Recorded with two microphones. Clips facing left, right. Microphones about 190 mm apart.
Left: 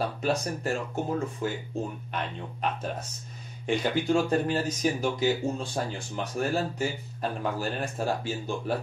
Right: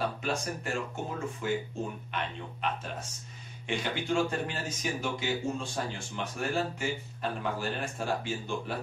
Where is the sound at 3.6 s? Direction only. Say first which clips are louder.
Left 6 dB; 40° left (ahead or behind).